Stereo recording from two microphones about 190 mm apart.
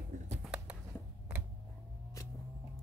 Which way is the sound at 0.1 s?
40° right (ahead or behind).